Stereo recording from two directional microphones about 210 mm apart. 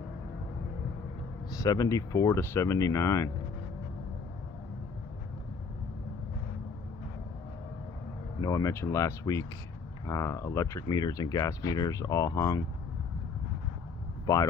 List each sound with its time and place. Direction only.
1.6 s speech: 15° left (ahead or behind)
8.4 s speech: 15° left (ahead or behind)
14.2 s speech: 15° left (ahead or behind)